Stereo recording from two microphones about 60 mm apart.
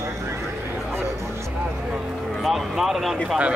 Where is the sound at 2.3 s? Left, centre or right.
Centre.